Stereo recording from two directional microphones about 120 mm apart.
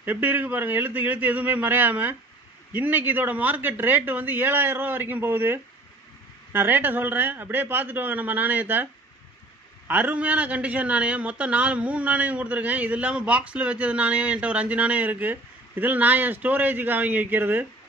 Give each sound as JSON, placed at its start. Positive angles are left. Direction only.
{"t": 0.0, "sound": "a man's voice", "side_deg": -15}
{"t": 9.8, "sound": "a man's voice", "side_deg": -15}